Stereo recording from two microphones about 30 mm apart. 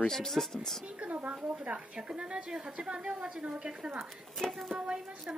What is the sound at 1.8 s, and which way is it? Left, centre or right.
A woman's voice, right.